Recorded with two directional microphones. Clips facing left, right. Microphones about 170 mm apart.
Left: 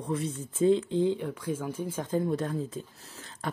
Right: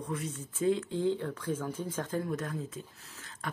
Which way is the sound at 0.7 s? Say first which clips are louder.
Left 4 dB; 20° left (ahead or behind).